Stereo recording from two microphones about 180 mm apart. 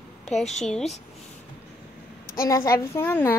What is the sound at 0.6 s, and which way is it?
Speech, 5° left (ahead or behind).